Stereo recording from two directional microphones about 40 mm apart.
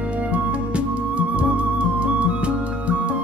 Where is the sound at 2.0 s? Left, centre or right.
Right.